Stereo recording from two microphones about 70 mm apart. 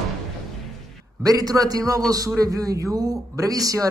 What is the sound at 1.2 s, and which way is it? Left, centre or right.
Speech, right.